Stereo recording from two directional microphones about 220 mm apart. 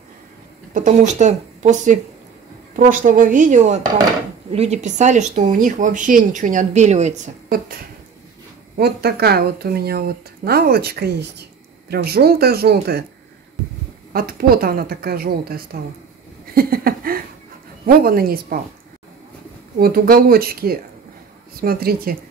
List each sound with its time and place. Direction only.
0.7 s speech: 35° right (ahead or behind)
14.1 s speech: 40° right (ahead or behind)
16.5 s a sound: 40° right (ahead or behind)
17.8 s speech: 40° right (ahead or behind)
19.8 s speech: 40° right (ahead or behind)